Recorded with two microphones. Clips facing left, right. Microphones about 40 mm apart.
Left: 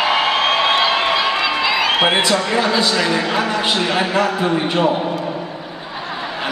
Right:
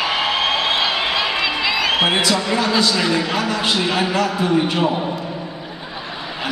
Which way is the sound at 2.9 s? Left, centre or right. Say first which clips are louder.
Left 1 dB; left.